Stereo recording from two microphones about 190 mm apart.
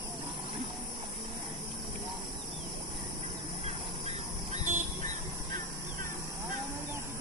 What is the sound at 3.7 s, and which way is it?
Vehicle, 35° right (ahead or behind).